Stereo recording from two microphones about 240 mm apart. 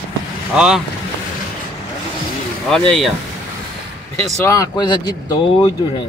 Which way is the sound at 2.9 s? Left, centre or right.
Centre.